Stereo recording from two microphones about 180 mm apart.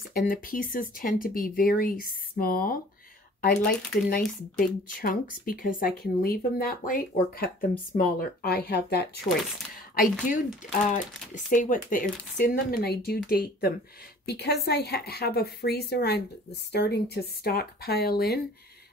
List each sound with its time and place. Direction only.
0.1 s a woman's voice: 55° left (ahead or behind)
9.9 s a woman's voice: 45° left (ahead or behind)